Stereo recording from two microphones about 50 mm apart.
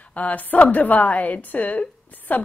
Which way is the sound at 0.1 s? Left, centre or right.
Left.